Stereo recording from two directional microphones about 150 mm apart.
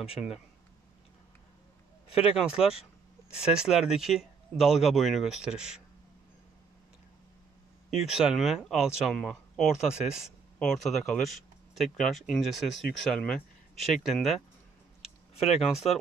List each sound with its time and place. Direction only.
0.0 s speech: 5° right (ahead or behind)
2.0 s speech: 40° left (ahead or behind)
2.3 s speech: 5° right (ahead or behind)
8.1 s speech: 5° right (ahead or behind)